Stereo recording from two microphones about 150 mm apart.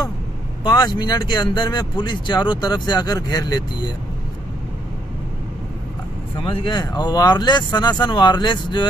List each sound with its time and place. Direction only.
0.7 s speech: 30° left (ahead or behind)
6.4 s speech: 35° left (ahead or behind)